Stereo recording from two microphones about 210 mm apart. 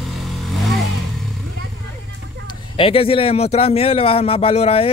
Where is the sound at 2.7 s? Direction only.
25° left (ahead or behind).